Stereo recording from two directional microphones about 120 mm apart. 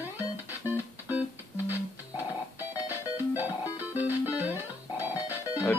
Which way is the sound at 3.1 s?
15° right (ahead or behind).